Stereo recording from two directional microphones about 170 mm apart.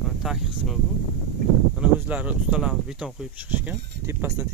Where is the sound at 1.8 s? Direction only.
10° right (ahead or behind).